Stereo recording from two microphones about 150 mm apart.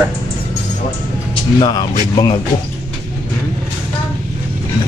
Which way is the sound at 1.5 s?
25° left (ahead or behind).